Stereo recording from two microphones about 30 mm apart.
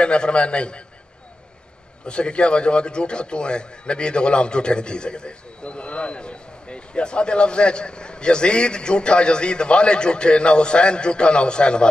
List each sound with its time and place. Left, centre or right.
0.0 s a man's voice: left
2.0 s a man's voice: left